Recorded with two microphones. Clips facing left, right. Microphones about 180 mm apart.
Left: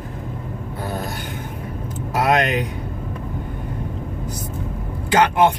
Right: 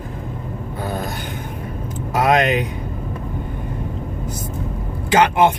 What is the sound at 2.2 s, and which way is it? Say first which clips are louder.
Speech: right 2 dB; 20° right (ahead or behind).